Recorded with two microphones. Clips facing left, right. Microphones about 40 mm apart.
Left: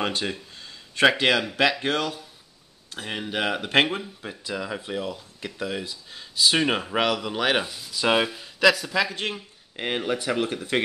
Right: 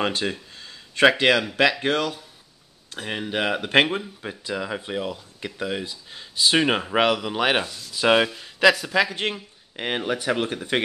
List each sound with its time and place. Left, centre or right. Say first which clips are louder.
0.1 s speech: right 2 dB; centre
7.6 s speech: right 1 dB; centre
7.9 s speech: right 3 dB; centre